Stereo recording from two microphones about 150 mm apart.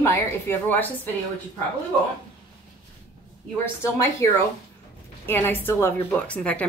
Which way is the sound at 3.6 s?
15° left (ahead or behind).